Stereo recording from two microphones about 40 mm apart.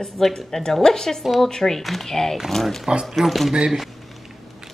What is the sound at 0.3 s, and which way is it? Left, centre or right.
A woman's voice, centre.